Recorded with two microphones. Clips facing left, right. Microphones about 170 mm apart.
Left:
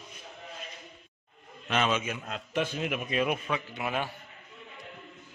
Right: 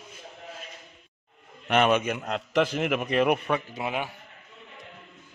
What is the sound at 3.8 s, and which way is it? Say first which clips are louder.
Speech: right 1 dB; 15° right (ahead or behind).